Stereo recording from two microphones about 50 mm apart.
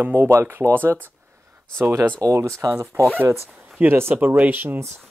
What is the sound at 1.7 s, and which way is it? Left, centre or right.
Speech, right.